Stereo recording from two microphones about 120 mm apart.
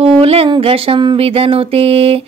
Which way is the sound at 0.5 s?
50° right (ahead or behind).